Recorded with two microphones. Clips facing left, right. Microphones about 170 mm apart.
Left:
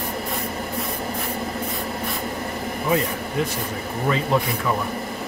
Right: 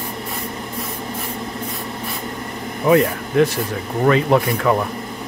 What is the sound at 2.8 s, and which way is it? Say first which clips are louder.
Speech: right 8 dB; 75° right (ahead or behind).